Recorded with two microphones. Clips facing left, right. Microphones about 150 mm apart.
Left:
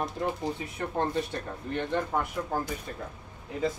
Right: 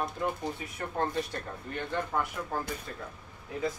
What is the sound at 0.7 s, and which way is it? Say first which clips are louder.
Speech: left 2 dB; 20° left (ahead or behind).